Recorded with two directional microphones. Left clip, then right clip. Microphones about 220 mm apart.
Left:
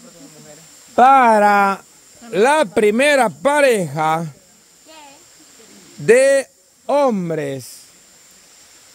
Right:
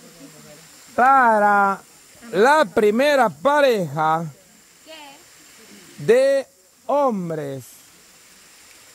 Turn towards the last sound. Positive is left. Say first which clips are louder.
# left 5 dB
turn(degrees=25)  # may be behind; listen again after turning